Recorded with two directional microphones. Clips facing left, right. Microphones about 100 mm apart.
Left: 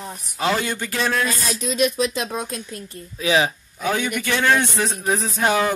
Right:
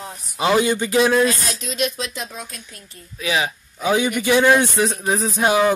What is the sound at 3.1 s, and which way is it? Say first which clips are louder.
Speech: left 3 dB; 30° left (ahead or behind).